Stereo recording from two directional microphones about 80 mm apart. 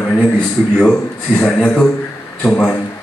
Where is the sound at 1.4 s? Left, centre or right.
Centre.